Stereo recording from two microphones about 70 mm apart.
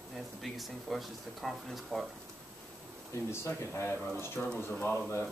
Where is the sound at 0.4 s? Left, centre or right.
Centre.